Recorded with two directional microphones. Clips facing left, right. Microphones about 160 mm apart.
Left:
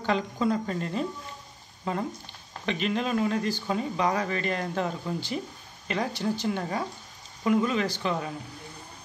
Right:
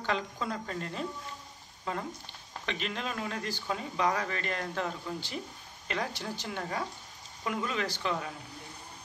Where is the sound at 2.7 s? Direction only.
10° left (ahead or behind).